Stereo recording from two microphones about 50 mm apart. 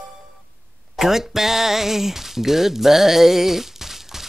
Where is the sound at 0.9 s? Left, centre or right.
Centre.